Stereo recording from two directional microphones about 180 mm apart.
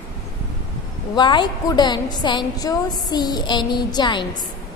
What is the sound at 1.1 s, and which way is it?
A woman's voice, 25° left (ahead or behind).